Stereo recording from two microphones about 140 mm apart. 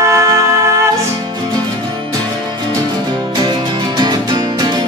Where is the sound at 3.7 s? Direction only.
30° right (ahead or behind).